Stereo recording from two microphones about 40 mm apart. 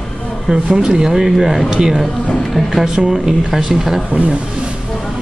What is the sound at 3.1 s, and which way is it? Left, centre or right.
Speech, centre.